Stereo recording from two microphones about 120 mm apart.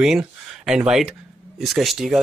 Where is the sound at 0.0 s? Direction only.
5° right (ahead or behind).